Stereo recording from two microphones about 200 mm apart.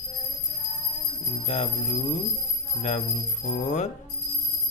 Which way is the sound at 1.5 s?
35° left (ahead or behind).